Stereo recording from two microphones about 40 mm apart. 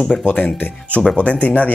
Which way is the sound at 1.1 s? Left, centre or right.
Left.